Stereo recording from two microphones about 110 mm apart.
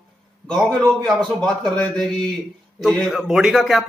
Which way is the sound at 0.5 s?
5° left (ahead or behind).